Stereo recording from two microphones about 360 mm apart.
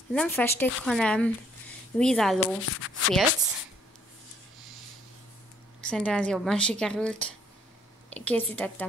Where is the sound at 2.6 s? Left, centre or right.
Left.